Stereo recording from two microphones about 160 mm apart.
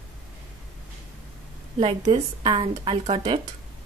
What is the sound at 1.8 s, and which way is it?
A woman's voice, 35° right (ahead or behind).